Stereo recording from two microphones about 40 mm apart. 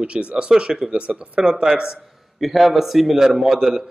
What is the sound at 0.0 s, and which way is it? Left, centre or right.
Speech, right.